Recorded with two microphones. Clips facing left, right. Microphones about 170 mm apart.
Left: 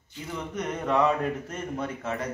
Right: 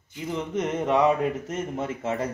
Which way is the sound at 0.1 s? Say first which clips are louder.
Right 6 dB; 20° right (ahead or behind).